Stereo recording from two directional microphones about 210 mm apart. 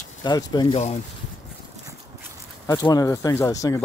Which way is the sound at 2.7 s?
15° left (ahead or behind).